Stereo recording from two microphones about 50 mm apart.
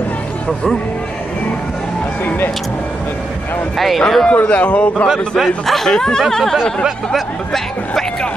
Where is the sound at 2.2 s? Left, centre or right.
Left.